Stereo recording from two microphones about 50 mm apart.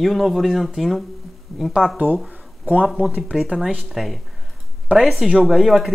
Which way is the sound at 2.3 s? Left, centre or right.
Right.